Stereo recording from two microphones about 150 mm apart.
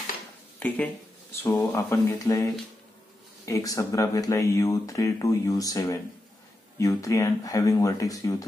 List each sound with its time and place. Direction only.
0.6 s speech: 10° left (ahead or behind)